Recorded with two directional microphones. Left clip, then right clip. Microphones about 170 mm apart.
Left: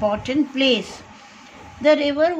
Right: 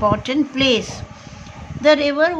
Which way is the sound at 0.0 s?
15° right (ahead or behind).